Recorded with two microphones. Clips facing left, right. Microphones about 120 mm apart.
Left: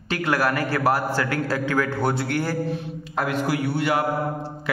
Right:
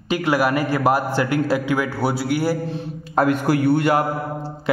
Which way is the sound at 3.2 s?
50° right (ahead or behind).